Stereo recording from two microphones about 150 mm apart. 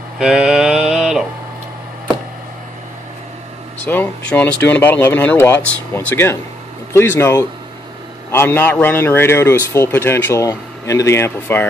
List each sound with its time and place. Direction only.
0.2 s mantra: 5° right (ahead or behind)
3.8 s speech: 15° left (ahead or behind)